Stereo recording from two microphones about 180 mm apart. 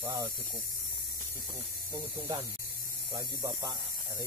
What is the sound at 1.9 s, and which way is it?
Speech, 15° right (ahead or behind).